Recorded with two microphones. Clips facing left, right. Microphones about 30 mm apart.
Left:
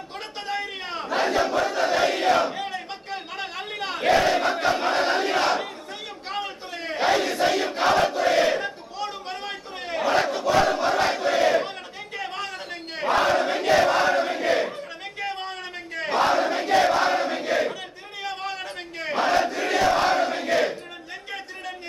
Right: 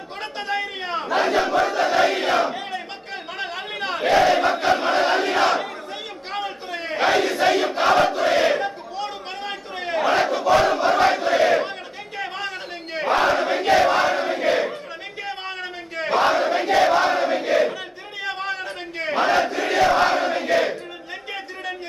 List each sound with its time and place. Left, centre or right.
0.5 s a sound: centre
2.5 s crowd: centre
6.3 s battle cry: centre
16.0 s battle cry: centre